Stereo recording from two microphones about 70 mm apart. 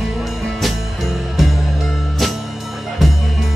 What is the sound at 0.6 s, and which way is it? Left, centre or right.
Music, centre.